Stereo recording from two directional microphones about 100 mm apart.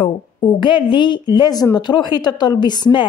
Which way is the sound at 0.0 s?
55° left (ahead or behind).